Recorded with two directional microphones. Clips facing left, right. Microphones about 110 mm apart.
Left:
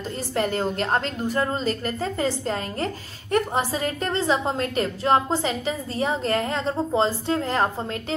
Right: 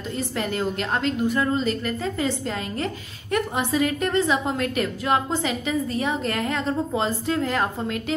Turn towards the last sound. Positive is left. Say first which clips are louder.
# even
turn(degrees=35)  # may be behind; listen again after turning